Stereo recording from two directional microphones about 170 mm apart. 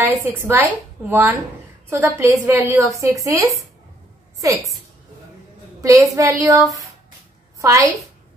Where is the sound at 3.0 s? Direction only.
20° right (ahead or behind).